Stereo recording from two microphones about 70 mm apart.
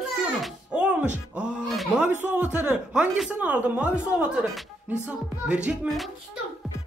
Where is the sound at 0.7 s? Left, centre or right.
Centre.